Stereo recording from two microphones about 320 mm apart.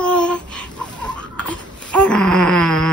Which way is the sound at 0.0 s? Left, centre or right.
Centre.